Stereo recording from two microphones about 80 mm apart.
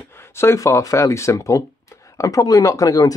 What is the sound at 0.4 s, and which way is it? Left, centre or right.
Speech, left.